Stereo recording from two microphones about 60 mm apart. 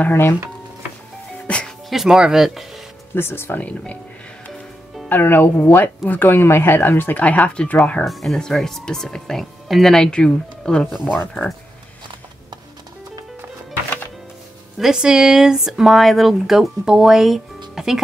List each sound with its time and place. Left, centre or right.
0.1 s speech: left
1.9 s speech: centre
3.2 s speech: left
3.5 s speech: left
5.0 s speech: left
7.2 s speech: left
8.0 s speech: centre
11.4 s speech: left
14.8 s speech: centre